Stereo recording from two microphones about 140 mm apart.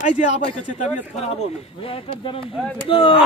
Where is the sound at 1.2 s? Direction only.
45° left (ahead or behind).